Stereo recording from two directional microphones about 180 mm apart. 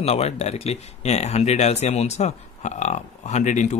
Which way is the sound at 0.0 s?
35° left (ahead or behind).